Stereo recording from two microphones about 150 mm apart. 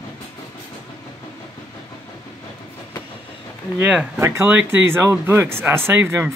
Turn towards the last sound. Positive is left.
turn(degrees=-15)  # may be behind; listen again after turning